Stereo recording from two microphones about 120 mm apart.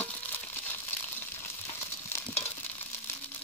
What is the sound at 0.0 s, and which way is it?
Frying, 15° left (ahead or behind).